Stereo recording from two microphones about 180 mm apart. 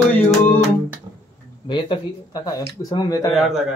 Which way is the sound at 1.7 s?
25° left (ahead or behind).